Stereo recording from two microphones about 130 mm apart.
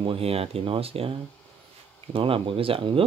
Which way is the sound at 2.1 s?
45° right (ahead or behind).